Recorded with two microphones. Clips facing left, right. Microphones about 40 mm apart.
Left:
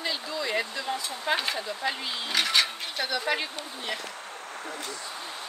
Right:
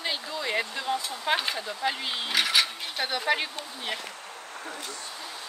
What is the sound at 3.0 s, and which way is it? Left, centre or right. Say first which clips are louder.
Speech: right 2 dB; right.